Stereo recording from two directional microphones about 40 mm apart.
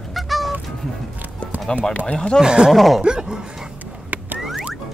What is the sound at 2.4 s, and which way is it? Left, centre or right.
Speech, centre.